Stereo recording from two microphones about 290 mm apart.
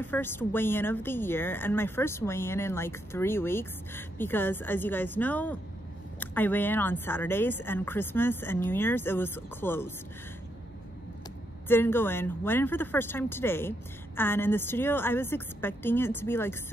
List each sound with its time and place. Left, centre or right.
0.0 s speech: centre
11.6 s speech: centre